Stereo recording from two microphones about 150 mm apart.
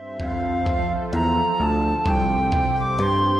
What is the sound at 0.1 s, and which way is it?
Music, centre (ahead or behind).